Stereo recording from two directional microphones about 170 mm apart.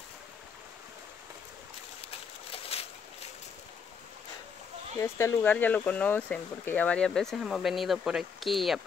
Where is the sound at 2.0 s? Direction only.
35° left (ahead or behind).